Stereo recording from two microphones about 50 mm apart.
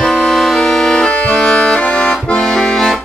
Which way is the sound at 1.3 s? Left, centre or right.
Centre.